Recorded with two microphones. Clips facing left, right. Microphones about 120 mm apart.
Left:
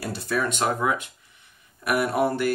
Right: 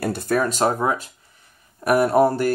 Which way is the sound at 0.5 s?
35° right (ahead or behind).